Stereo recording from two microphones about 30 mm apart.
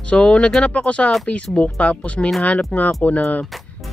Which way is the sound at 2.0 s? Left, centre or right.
Left.